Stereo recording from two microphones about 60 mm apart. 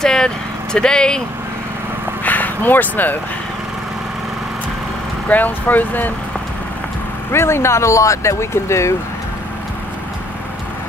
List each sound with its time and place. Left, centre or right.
0.0 s vehicle: centre
0.7 s speech: centre
2.2 s a sound: left
5.3 s speech: left
7.3 s speech: left